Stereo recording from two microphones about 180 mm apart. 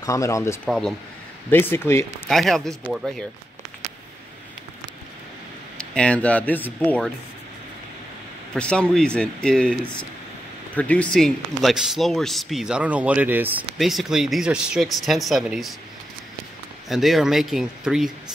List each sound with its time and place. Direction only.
0.0 s speech: 15° left (ahead or behind)
0.7 s speech: 5° left (ahead or behind)
2.2 s speech: centre (ahead or behind)
5.8 s speech: 5° left (ahead or behind)
8.5 s speech: 5° left (ahead or behind)
16.9 s speech: centre (ahead or behind)